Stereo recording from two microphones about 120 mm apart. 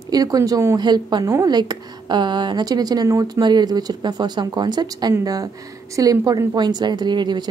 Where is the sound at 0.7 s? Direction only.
35° right (ahead or behind).